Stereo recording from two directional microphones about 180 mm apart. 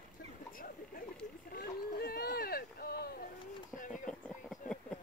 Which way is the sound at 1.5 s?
55° left (ahead or behind).